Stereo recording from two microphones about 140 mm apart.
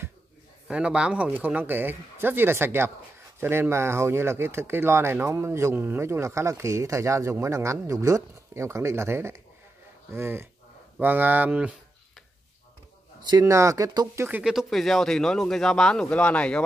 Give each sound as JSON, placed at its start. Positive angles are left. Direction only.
{"t": 0.7, "sound": "speech", "side_deg": -5}
{"t": 13.2, "sound": "speech", "side_deg": -30}
{"t": 14.4, "sound": "a man's voice", "side_deg": -5}